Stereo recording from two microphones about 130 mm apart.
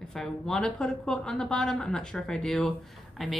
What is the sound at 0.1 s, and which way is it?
Speech, 5° left (ahead or behind).